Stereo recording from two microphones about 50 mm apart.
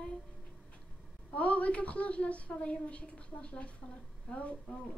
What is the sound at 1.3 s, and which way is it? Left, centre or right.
A woman's voice, left.